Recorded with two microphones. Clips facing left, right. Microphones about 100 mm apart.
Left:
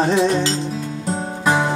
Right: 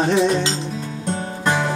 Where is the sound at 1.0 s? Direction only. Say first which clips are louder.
Left 2 dB; 5° left (ahead or behind).